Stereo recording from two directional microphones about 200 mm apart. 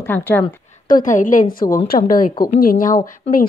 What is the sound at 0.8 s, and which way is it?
A woman's voice, 40° left (ahead or behind).